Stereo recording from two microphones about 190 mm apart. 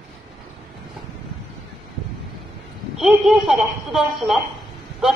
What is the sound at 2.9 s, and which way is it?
Speech, centre (ahead or behind).